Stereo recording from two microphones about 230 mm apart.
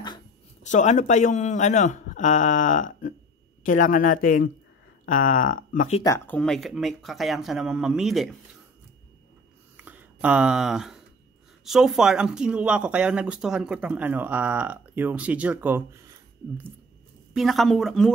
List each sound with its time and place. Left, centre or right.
0.7 s a man's voice: left
6.0 s speech: centre
9.8 s a sound: centre
11.6 s speech: centre
17.3 s speech: centre